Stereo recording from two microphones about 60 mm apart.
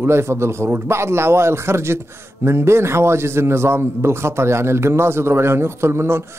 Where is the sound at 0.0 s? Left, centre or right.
Right.